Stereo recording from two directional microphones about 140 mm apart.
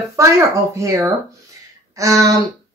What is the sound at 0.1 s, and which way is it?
Speech, 20° right (ahead or behind).